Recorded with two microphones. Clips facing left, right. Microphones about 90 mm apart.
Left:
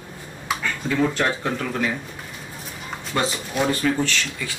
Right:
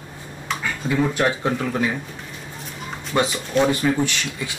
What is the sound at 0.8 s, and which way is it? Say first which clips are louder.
Speech: right 1 dB; 15° right (ahead or behind).